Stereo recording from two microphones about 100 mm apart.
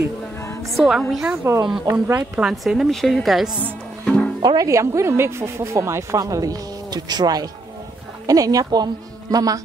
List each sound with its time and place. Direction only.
0.7 s a woman's voice: centre (ahead or behind)
1.9 s speech: 25° right (ahead or behind)
2.3 s a woman's voice: 5° right (ahead or behind)
4.0 s music: 10° left (ahead or behind)
4.4 s speech: 45° right (ahead or behind)
4.6 s a woman's voice: 30° right (ahead or behind)